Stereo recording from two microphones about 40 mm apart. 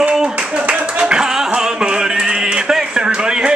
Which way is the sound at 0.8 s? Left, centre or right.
Right.